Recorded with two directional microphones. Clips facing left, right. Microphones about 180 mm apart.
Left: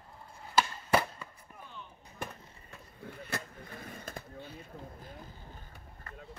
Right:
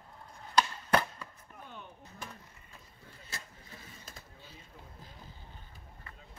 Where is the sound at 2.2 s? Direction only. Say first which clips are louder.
Left 7 dB; 60° left (ahead or behind).